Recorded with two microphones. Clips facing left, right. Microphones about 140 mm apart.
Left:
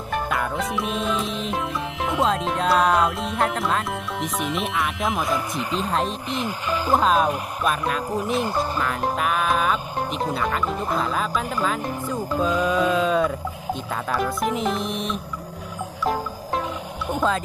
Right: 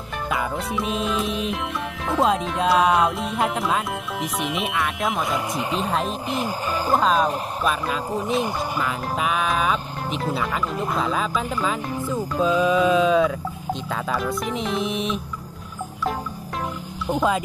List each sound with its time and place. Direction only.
0.1 s music: centre (ahead or behind)
2.1 s speech: 5° right (ahead or behind)
5.5 s speech: 25° right (ahead or behind)
5.8 s speech: centre (ahead or behind)